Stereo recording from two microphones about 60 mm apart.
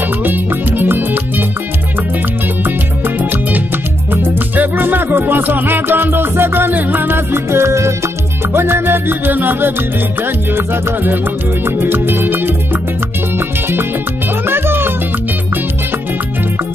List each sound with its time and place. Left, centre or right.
0.2 s music: right
4.1 s music: right
7.3 s music: right
14.5 s music: right